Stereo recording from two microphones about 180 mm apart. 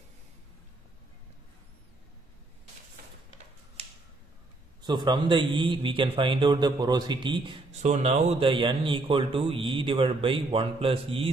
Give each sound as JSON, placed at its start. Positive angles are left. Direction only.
{"t": 4.8, "sound": "speech", "side_deg": -25}
{"t": 7.8, "sound": "speech", "side_deg": -40}